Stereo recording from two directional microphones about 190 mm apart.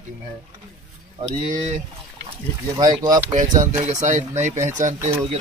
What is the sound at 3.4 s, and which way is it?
Speech, 40° right (ahead or behind).